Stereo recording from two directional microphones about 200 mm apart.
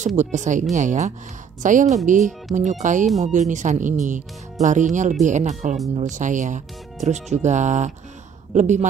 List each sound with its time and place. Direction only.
0.0 s speech: 35° right (ahead or behind)